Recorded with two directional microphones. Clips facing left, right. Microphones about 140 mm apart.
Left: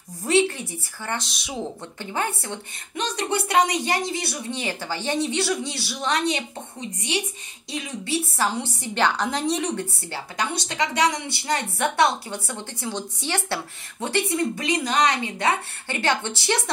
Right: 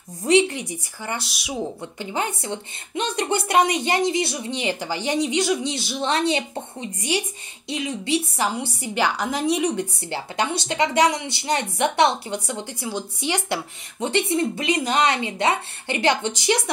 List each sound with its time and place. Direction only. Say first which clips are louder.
0.3 s a woman's voice: right 2 dB; 15° right (ahead or behind)
7.7 s a woman's voice: right 4 dB; 20° right (ahead or behind)
10.1 s a woman's voice: right 3 dB; 25° right (ahead or behind)
11.2 s a woman's voice: right 2 dB; 20° right (ahead or behind)